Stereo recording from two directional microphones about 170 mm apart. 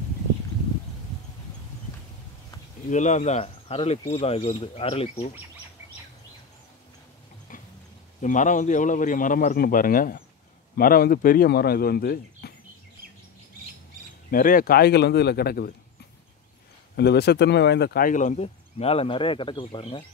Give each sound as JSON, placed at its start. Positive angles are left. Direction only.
{"t": 2.9, "sound": "speech", "side_deg": 45}
{"t": 8.2, "sound": "speech", "side_deg": 50}
{"t": 14.3, "sound": "speech", "side_deg": 55}
{"t": 16.9, "sound": "speech", "side_deg": 75}